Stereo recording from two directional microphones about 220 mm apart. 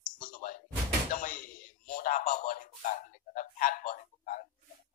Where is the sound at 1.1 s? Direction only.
40° left (ahead or behind).